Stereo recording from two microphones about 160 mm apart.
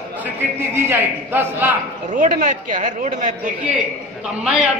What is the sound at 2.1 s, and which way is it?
Speech, 55° right (ahead or behind).